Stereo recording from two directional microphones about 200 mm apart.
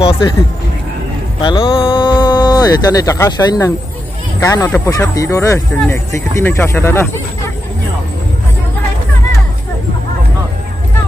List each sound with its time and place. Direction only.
1.4 s speech: 20° left (ahead or behind)